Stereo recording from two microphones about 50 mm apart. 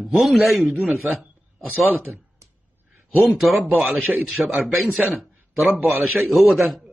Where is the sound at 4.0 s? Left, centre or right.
Right.